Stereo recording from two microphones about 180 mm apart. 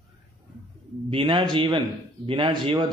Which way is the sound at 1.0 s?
30° right (ahead or behind).